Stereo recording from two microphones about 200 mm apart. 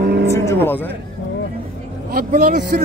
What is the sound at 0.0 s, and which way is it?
Music, 50° right (ahead or behind).